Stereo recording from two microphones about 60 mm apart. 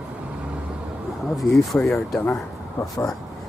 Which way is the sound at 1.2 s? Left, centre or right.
Centre.